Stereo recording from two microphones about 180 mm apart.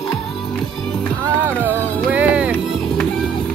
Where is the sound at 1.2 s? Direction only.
15° right (ahead or behind).